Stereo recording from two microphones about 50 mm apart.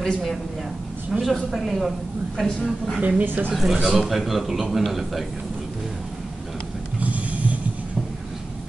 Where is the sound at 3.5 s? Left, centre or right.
Centre.